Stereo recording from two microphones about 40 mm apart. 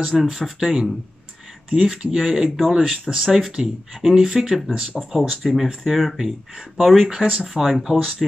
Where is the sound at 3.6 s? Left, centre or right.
Right.